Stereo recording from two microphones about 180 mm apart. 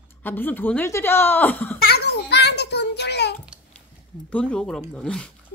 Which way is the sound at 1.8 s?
65° left (ahead or behind).